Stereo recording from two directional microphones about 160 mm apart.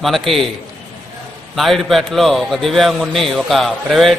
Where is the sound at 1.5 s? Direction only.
Centre (ahead or behind).